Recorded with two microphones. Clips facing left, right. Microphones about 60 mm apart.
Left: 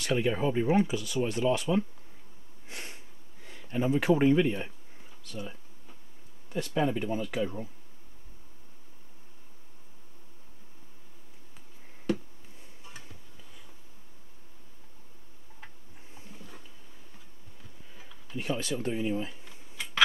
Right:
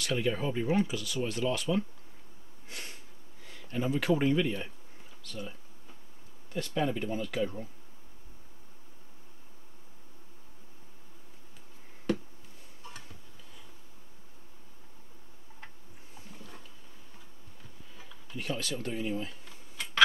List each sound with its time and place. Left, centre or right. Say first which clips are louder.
0.0 s speech: left 3 dB; centre
2.7 s sniff: left 1 dB; centre
3.4 s speech: left 3 dB; centre
5.3 s speech: left 1 dB; centre
16.3 s a sound: even; centre
17.9 s a sound: left 3 dB; centre